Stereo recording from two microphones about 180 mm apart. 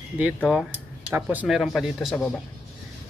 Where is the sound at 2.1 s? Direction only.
5° left (ahead or behind).